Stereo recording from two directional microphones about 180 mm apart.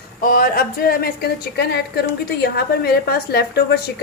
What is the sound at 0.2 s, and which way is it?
A woman's voice, 50° left (ahead or behind).